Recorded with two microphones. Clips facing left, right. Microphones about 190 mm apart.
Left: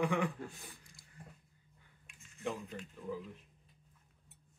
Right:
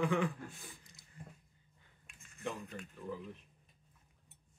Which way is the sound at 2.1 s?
55° right (ahead or behind).